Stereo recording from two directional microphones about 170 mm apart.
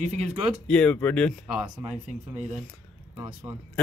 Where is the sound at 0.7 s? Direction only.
5° left (ahead or behind).